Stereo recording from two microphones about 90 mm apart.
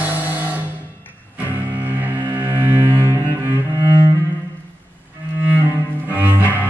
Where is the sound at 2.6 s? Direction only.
30° right (ahead or behind).